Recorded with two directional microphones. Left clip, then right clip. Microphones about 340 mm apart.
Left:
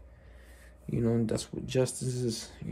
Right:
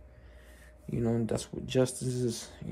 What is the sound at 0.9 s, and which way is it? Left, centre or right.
Speech, centre.